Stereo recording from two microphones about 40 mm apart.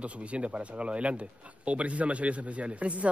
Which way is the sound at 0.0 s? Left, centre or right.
Right.